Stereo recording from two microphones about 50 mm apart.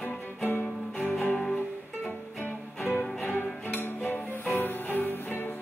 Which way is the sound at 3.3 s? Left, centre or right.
Left.